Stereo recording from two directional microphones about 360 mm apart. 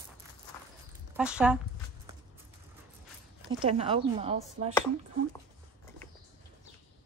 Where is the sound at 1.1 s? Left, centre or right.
Centre.